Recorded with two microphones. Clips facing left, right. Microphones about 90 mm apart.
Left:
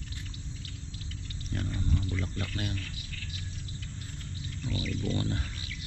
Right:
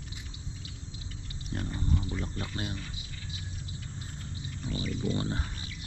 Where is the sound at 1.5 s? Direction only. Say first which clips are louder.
Right 1 dB; 25° right (ahead or behind).